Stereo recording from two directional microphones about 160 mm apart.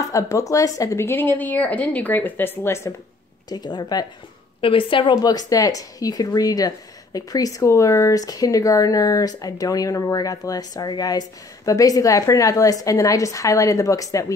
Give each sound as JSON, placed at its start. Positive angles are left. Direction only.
{"t": 0.1, "sound": "a woman's voice", "side_deg": 20}